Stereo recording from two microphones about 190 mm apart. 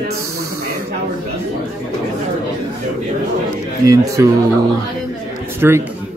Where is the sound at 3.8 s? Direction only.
15° right (ahead or behind).